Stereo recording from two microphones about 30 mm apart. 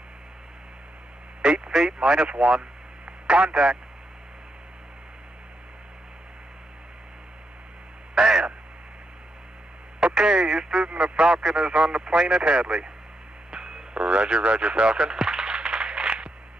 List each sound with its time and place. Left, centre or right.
1.4 s a sound: right
1.8 s a man's voice: right
8.1 s a sound: right
10.0 s radio: right
10.9 s radio: right
11.1 s radio: right
12.4 s a man's voice: right
13.5 s a sound: right
14.1 s radio: right